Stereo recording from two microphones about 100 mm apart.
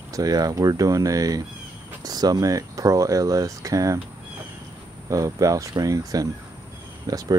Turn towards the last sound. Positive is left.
turn(degrees=-40)  # may be behind; listen again after turning